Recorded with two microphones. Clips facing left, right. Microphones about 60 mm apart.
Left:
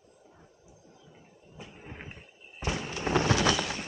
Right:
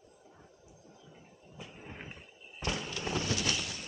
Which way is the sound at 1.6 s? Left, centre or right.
Centre.